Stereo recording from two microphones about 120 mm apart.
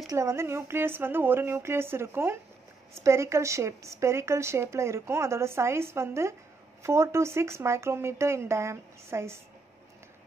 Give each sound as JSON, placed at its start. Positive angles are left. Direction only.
{"t": 0.1, "sound": "a woman's voice", "side_deg": -25}